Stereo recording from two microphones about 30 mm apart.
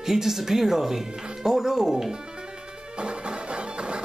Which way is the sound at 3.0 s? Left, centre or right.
Right.